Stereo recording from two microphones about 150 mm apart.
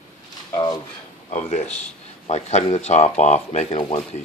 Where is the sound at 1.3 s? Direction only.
50° left (ahead or behind).